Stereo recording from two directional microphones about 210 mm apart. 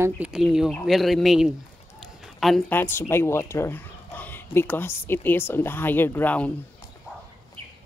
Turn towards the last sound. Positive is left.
turn(degrees=5)  # may be behind; listen again after turning